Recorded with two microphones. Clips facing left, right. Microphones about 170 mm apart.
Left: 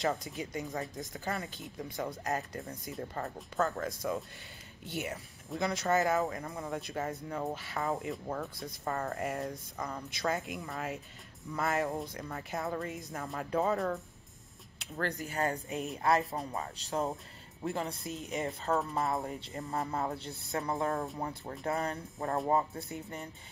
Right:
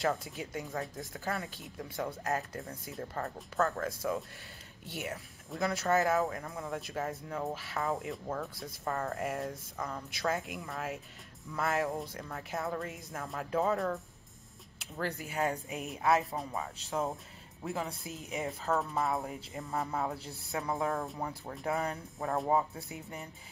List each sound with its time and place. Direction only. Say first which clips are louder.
0.0 s speech: even; centre (ahead or behind)